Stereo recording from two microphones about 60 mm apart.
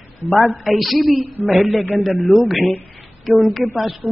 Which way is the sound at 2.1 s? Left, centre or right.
Left.